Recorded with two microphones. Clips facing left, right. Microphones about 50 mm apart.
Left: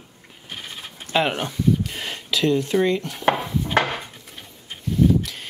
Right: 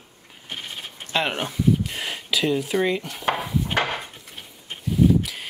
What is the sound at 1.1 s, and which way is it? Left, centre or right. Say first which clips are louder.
Speech: left 3 dB; centre.